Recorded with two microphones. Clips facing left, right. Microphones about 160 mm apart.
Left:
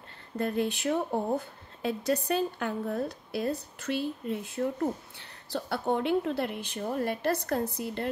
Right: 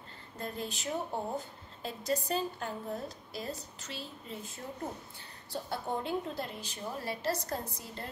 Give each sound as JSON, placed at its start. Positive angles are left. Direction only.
{"t": 0.4, "sound": "a woman's voice", "side_deg": 65}